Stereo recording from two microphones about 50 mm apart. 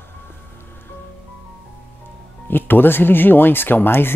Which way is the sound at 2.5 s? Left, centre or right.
Left.